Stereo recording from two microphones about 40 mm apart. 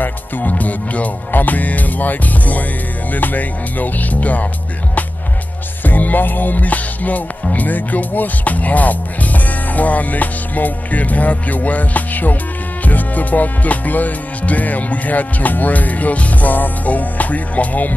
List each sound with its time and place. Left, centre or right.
0.0 s music: left
5.9 s music: left